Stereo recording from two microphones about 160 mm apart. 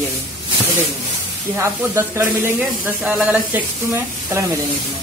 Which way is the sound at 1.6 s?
15° right (ahead or behind).